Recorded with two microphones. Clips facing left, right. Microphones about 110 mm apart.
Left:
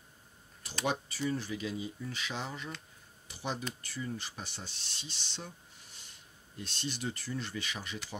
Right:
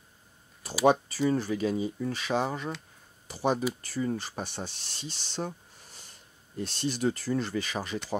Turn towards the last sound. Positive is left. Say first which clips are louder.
# right 8 dB
turn(degrees=-40)  # may be behind; listen again after turning